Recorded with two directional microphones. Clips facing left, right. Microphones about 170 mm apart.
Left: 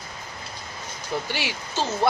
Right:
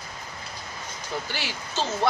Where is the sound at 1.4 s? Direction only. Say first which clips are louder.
Left 2 dB; 10° left (ahead or behind).